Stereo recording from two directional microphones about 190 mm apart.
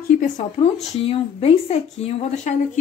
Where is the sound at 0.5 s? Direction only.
30° left (ahead or behind).